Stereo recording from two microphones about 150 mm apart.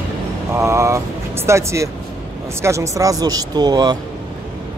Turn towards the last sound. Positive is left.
turn(degrees=-30)  # may be behind; listen again after turning